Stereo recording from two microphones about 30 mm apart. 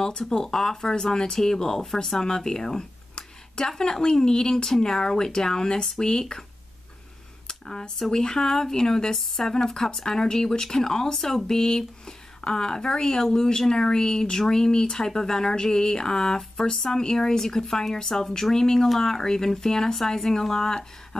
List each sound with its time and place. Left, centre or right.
0.2 s speech: centre
8.0 s speech: left